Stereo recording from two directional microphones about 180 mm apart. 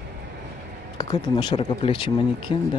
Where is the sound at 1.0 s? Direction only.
25° left (ahead or behind).